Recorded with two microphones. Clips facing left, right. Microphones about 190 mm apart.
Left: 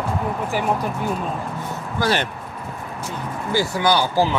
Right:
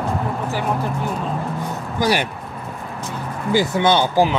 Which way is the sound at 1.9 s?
15° right (ahead or behind).